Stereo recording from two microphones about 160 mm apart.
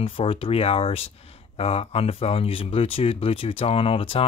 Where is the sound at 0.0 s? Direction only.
35° left (ahead or behind).